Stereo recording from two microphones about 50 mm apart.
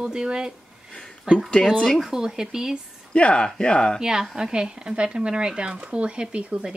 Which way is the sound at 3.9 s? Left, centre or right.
Centre.